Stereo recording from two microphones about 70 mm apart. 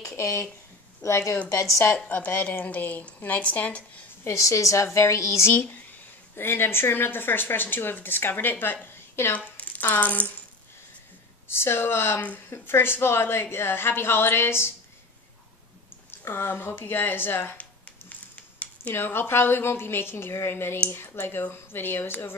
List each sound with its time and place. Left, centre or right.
0.0 s a sound: left
1.0 s a woman's voice: left
2.0 s a woman's voice: left
4.2 s a woman's voice: left
8.8 s a sound: left
9.6 s speech: left
11.4 s speech: left
16.1 s speech: left